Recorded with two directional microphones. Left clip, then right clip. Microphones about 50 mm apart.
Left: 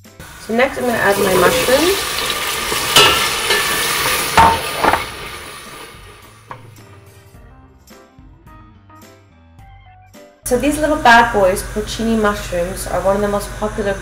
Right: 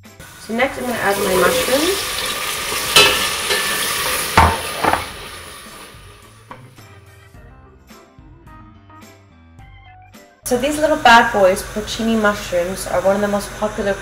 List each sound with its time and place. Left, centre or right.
0.5 s speech: left
1.7 s stir: left
4.3 s a sound: left
5.8 s music: left
10.5 s a woman's voice: centre